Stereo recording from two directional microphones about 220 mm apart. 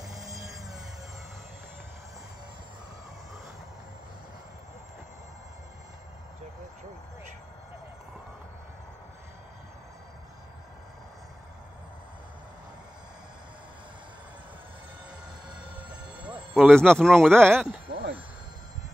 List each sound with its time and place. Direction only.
0.0 s music: 15° right (ahead or behind)
16.3 s music: centre (ahead or behind)
17.0 s speech: centre (ahead or behind)
17.9 s a sound: 50° right (ahead or behind)